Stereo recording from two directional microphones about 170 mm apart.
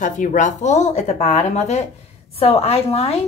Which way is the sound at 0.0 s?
50° left (ahead or behind).